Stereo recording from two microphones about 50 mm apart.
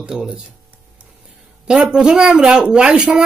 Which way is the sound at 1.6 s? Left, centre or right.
Centre.